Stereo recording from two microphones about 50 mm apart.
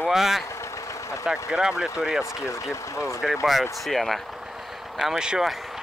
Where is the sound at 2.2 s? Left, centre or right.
Left.